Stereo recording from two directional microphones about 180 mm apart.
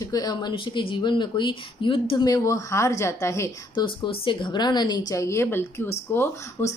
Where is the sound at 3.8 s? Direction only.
25° left (ahead or behind).